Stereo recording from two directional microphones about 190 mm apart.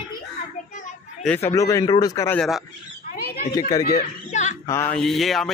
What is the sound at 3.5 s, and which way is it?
A man's voice, 20° left (ahead or behind).